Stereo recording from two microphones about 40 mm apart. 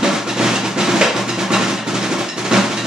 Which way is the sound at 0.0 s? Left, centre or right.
Centre.